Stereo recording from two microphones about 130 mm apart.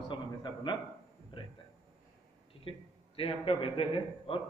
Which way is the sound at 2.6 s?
45° left (ahead or behind).